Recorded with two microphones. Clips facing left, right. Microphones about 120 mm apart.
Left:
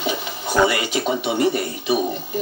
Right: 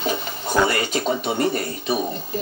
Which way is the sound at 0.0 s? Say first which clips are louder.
Even; 40° right (ahead or behind).